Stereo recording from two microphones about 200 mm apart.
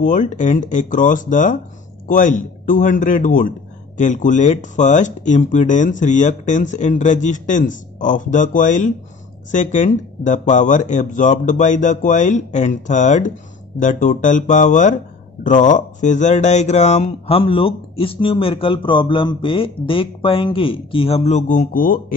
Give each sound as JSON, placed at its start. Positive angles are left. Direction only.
{"t": 0.0, "sound": "a man's voice", "side_deg": 40}